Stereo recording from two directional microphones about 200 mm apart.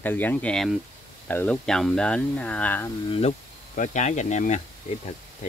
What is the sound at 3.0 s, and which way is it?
Speech, 30° left (ahead or behind).